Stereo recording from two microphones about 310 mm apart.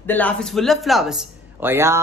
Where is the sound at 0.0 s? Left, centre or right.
Centre.